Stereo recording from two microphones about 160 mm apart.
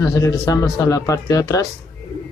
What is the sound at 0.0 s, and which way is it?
Speech, 20° left (ahead or behind).